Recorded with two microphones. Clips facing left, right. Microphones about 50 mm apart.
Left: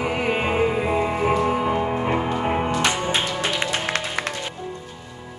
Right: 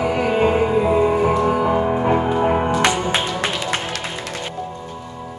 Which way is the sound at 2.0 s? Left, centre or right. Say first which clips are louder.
Right 5 dB; centre.